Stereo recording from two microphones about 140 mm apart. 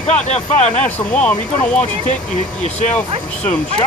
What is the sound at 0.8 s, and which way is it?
Speech, 10° left (ahead or behind).